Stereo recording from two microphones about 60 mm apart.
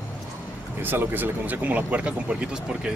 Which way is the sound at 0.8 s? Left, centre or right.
Right.